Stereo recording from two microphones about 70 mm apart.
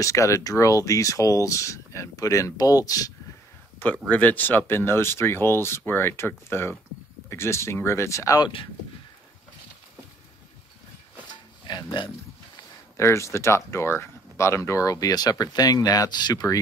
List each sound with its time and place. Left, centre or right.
0.0 s speech: left
4.1 s speech: left
11.6 s speech: left
12.9 s speech: left